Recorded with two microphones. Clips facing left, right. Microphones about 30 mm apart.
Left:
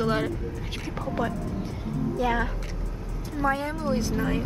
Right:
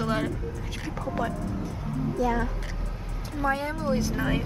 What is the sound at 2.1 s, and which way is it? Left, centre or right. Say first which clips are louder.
Speech: left 1 dB; left.